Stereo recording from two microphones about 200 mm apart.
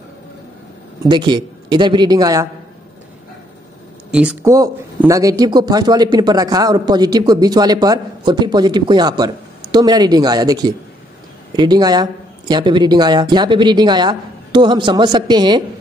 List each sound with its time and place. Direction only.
1.0 s speech: 20° right (ahead or behind)
4.1 s speech: 5° right (ahead or behind)
4.5 s speech: 15° right (ahead or behind)